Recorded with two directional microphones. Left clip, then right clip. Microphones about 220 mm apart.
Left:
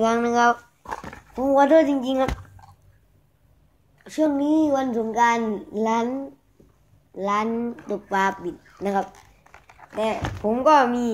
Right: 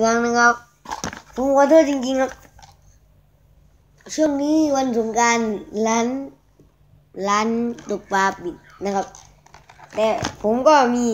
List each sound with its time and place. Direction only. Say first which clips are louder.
0.0 s a child's voice: right 3 dB; 5° right (ahead or behind)
4.0 s a child's voice: right 2 dB; 5° left (ahead or behind)
7.2 s a child's voice: right 4 dB; 15° right (ahead or behind); by 11.1 s centre (ahead or behind)